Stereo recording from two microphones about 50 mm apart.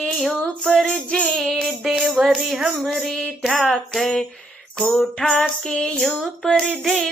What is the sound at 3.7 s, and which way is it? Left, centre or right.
Music, centre.